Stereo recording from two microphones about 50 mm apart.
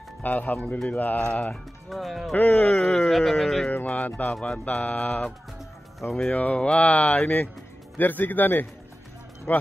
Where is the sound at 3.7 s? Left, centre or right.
Left.